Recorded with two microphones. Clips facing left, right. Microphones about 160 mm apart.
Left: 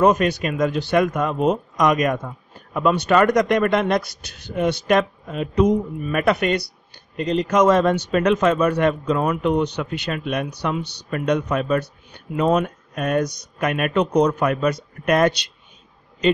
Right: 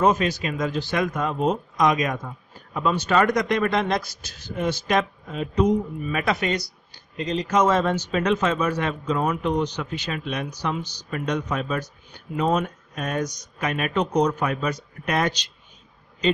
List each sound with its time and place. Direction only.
0.0 s speech: 60° left (ahead or behind)